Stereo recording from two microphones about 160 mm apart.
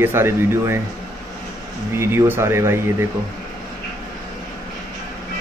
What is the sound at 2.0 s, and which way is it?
A man's voice, 15° right (ahead or behind).